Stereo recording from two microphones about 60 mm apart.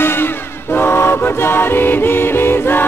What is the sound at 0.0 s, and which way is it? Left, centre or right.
Music, left.